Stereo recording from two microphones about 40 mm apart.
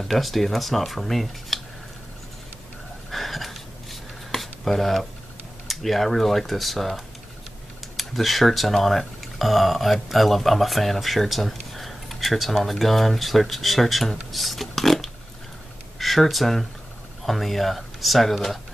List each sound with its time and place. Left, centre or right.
0.1 s speech: centre
3.1 s a sound: centre
5.7 s speech: centre
8.0 s speech: centre
14.3 s a sound: centre
16.0 s speech: centre